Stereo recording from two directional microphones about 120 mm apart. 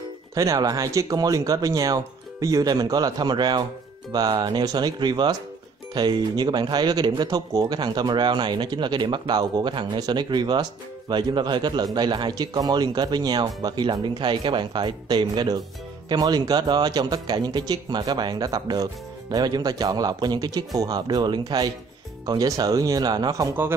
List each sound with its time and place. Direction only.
0.3 s speech: 30° right (ahead or behind)